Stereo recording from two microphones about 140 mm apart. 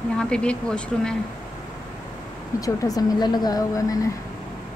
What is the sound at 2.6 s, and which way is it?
Speech, 25° left (ahead or behind).